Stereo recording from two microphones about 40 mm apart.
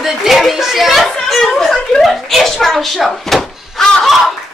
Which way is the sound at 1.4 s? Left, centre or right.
Centre.